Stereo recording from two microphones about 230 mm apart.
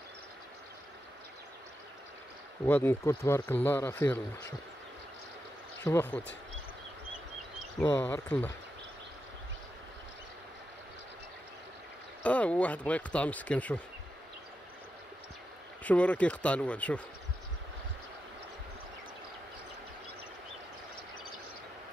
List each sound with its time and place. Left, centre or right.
2.6 s speech: centre
5.9 s speech: centre
7.8 s speech: centre
12.2 s speech: centre
15.8 s speech: centre